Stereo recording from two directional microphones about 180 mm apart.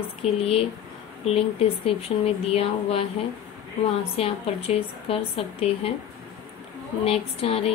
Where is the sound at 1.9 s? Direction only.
35° left (ahead or behind).